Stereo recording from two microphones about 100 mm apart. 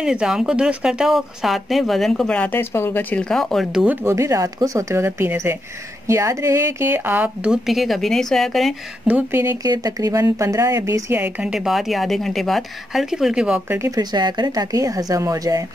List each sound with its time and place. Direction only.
0.0 s speech: 10° right (ahead or behind)
3.7 s speech: 15° right (ahead or behind)
4.0 s a woman's voice: 30° right (ahead or behind); by 8.7 s centre (ahead or behind)
9.3 s a woman's voice: 25° right (ahead or behind)
9.6 s speech: 40° right (ahead or behind)
11.1 s speech: 10° right (ahead or behind)
13.7 s speech: 30° right (ahead or behind)
14.1 s speech: 45° right (ahead or behind)